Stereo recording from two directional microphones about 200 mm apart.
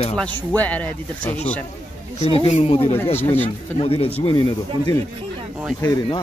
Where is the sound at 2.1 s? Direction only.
30° left (ahead or behind).